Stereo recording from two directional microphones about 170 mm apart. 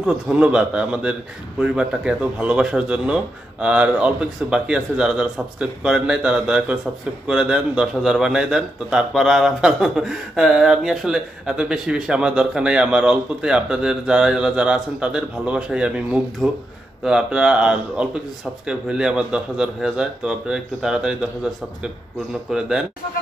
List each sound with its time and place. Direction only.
0.0 s a man's voice: 5° right (ahead or behind)
22.5 s a man's voice: 5° right (ahead or behind)